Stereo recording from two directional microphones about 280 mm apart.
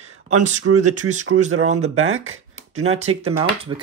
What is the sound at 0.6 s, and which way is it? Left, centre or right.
Speech, right.